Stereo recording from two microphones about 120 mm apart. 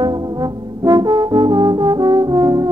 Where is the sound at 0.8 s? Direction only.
35° right (ahead or behind).